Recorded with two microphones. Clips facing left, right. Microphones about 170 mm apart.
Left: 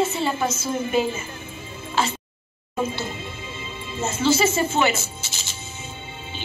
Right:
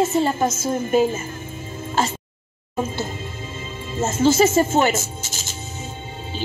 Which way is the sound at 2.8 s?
45° right (ahead or behind).